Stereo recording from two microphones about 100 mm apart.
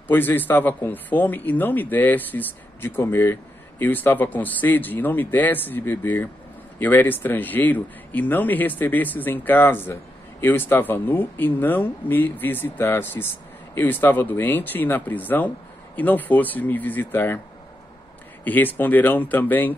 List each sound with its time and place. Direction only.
0.1 s speech: 20° left (ahead or behind)
18.4 s speech: 20° left (ahead or behind)